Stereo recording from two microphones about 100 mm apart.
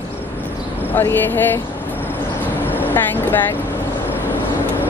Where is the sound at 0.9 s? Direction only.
20° left (ahead or behind).